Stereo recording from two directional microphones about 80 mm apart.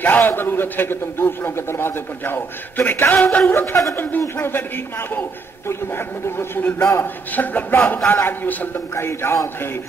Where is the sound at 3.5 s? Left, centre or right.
Left.